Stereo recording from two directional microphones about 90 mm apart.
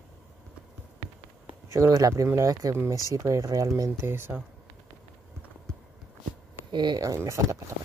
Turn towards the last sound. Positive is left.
turn(degrees=-35)  # may be behind; listen again after turning